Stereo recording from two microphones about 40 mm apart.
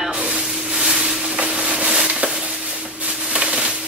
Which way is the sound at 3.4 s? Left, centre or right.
Right.